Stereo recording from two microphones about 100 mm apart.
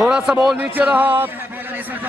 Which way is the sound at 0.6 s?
15° right (ahead or behind).